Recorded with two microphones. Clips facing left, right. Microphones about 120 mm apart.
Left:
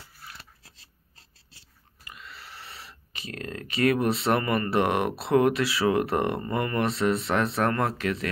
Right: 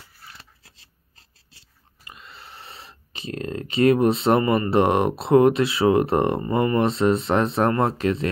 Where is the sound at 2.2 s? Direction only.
25° right (ahead or behind).